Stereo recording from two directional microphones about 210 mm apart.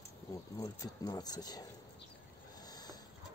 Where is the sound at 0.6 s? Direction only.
20° left (ahead or behind).